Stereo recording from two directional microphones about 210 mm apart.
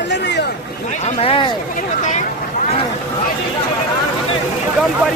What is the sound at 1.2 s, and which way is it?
Speech, 25° left (ahead or behind).